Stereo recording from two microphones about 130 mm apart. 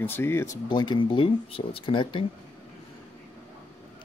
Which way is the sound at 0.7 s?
35° left (ahead or behind).